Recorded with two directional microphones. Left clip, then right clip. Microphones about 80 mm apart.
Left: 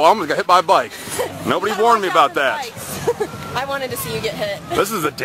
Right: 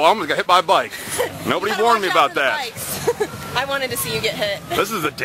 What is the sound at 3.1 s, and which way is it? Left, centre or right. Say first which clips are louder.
Speech: left 1 dB; right.